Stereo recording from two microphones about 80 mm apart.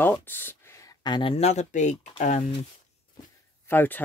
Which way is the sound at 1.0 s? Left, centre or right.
Left.